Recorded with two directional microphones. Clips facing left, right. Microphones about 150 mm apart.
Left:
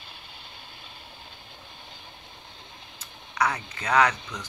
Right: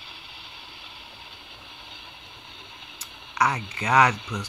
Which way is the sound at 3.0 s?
15° right (ahead or behind).